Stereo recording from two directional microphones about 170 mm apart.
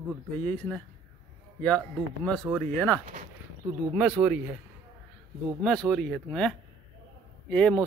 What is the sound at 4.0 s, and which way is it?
Speech, 5° right (ahead or behind).